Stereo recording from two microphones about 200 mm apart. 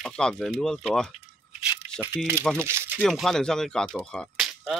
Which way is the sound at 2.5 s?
10° right (ahead or behind).